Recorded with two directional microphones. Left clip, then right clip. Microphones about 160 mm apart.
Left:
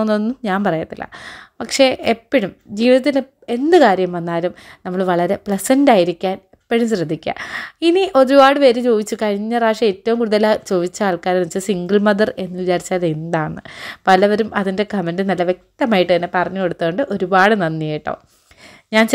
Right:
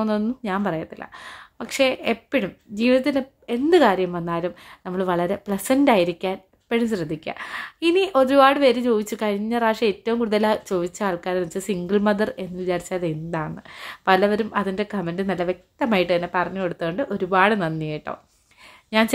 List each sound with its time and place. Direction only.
0.4 s a woman's voice: 35° left (ahead or behind)